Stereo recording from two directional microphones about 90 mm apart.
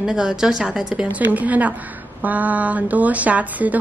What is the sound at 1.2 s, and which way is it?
A woman's voice, 20° right (ahead or behind).